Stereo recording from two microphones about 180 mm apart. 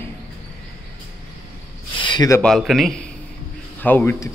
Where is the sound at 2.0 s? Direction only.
25° left (ahead or behind).